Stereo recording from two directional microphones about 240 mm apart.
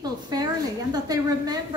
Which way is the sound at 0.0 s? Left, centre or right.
Centre.